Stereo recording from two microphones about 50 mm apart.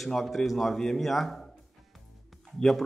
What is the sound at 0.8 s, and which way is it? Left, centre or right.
Speech, centre.